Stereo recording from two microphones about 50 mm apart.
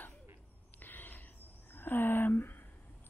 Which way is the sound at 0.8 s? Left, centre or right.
Left.